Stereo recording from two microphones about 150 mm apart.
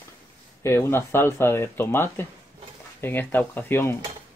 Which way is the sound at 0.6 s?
15° left (ahead or behind).